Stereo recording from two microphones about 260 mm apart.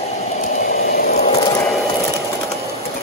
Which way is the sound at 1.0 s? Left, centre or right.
Left.